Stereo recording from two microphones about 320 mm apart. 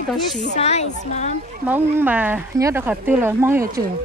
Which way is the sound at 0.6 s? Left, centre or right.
Left.